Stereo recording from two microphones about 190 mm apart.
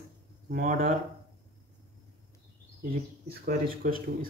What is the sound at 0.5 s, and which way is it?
Speech, 50° right (ahead or behind).